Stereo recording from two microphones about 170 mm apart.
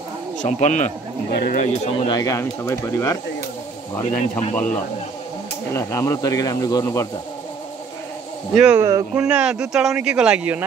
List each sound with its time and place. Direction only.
0.4 s a man's voice: 45° left (ahead or behind)
1.3 s speech: 60° left (ahead or behind)
2.0 s speech: 20° left (ahead or behind)
4.0 s speech: 35° left (ahead or behind)
5.7 s speech: 15° left (ahead or behind)
8.5 s speech: 5° right (ahead or behind)
8.8 s speech: 15° right (ahead or behind)
9.2 s speech: 5° right (ahead or behind)